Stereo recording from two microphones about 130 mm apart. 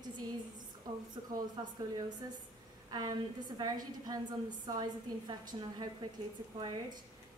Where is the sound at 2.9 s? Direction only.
35° right (ahead or behind).